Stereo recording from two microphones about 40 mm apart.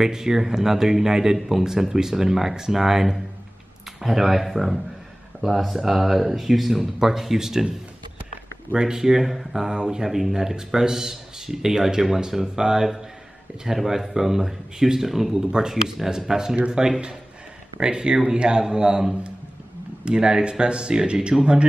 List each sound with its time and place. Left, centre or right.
0.0 s speech: centre
8.7 s speech: centre